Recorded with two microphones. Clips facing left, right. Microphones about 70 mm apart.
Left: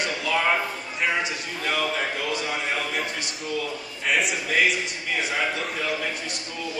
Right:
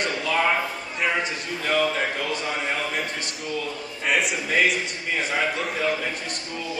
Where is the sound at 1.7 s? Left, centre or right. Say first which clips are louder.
Right 3 dB; centre.